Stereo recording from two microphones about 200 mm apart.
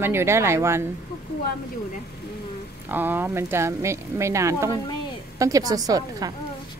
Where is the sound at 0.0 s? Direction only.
10° right (ahead or behind).